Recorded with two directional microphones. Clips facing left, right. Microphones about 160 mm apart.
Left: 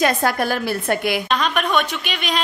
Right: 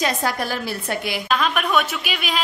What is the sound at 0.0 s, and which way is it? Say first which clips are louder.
A woman's voice: left 4 dB; 55° left (ahead or behind).